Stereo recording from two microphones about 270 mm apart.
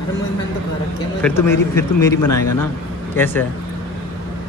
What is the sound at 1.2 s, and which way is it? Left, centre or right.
Speech, centre.